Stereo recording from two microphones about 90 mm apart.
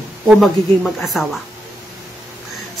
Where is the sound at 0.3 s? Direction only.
Centre (ahead or behind).